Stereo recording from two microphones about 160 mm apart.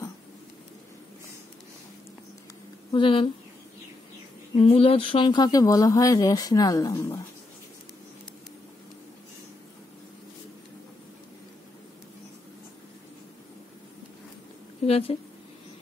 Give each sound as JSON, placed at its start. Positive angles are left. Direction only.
{"t": 2.9, "sound": "speech", "side_deg": 30}
{"t": 4.6, "sound": "speech", "side_deg": 35}
{"t": 14.9, "sound": "a woman's voice", "side_deg": 40}